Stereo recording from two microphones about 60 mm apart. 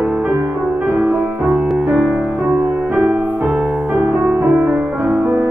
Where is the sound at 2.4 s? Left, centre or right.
Right.